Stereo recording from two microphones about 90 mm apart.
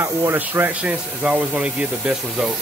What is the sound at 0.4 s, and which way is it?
Speech, 20° right (ahead or behind).